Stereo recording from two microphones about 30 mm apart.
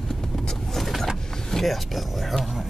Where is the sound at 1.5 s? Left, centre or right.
Centre.